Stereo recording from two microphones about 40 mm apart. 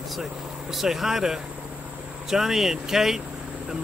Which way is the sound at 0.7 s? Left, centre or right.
Centre.